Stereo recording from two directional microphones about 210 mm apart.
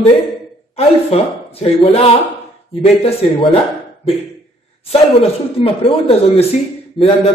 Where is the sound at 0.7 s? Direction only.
30° left (ahead or behind).